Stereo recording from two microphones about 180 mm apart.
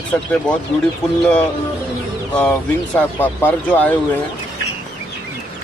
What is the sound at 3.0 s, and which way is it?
Speech, 10° left (ahead or behind).